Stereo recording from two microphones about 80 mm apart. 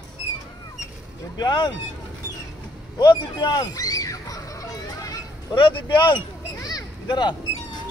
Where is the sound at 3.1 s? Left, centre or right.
Left.